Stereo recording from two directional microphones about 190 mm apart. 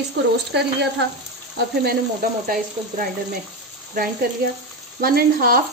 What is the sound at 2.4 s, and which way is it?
Speech, 45° right (ahead or behind).